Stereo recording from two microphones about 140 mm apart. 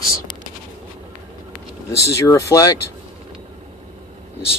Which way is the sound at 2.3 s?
25° left (ahead or behind).